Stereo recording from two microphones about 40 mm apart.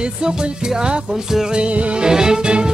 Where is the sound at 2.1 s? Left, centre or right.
Centre.